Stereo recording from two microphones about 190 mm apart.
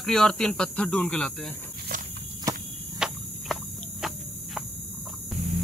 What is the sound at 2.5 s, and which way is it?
Cricket, 15° right (ahead or behind).